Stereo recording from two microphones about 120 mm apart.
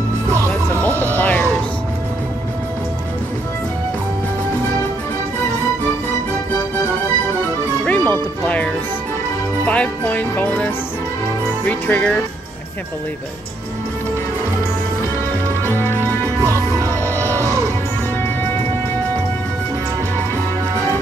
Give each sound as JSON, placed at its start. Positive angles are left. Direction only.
{"t": 1.1, "sound": "music", "side_deg": 15}
{"t": 7.8, "sound": "music", "side_deg": 10}
{"t": 9.7, "sound": "music", "side_deg": 10}
{"t": 11.6, "sound": "speech", "side_deg": 10}
{"t": 15.6, "sound": "music", "side_deg": 20}
{"t": 17.1, "sound": "music", "side_deg": -25}